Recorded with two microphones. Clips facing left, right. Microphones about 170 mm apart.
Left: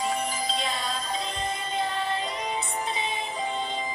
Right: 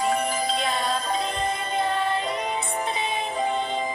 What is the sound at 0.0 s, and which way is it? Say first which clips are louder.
Music: right 5 dB; 60° right (ahead or behind).